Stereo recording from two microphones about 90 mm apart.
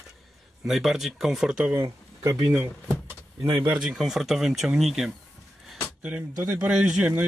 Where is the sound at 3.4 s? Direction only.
70° right (ahead or behind).